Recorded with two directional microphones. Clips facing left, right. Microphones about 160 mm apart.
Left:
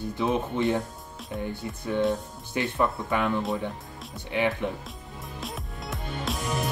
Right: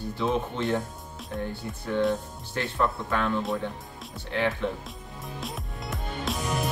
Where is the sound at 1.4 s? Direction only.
15° left (ahead or behind).